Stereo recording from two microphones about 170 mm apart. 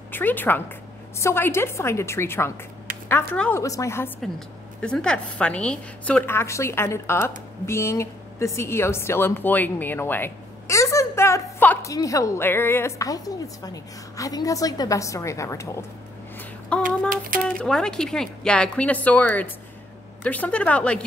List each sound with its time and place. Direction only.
0.1 s a woman's voice: 10° left (ahead or behind)
4.8 s a woman's voice: 5° left (ahead or behind)
16.7 s a woman's voice: 5° left (ahead or behind)